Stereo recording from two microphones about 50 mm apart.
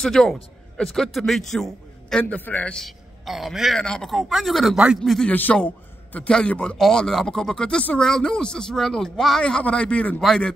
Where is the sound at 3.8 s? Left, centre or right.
Centre.